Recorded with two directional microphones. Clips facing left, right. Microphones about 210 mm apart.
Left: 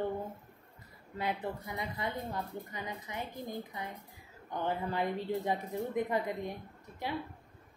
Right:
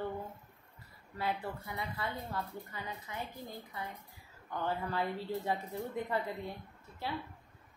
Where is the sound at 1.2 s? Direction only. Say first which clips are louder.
Left 1 dB; 20° left (ahead or behind).